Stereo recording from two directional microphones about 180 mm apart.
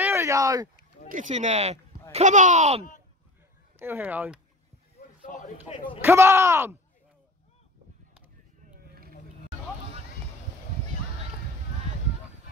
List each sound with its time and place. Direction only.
0.0 s a sound: 15° right (ahead or behind)
1.1 s speech: 45° right (ahead or behind)
3.8 s speech: 10° right (ahead or behind)
5.3 s speech: 45° left (ahead or behind)
5.9 s speech: 15° right (ahead or behind)